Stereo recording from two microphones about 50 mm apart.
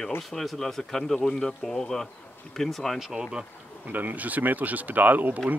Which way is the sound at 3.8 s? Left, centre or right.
Right.